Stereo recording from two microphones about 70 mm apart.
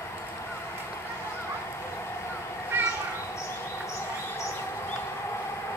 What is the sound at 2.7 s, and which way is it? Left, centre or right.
Crow, right.